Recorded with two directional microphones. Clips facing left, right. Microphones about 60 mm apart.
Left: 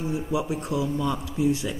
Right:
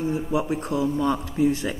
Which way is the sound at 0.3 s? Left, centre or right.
Right.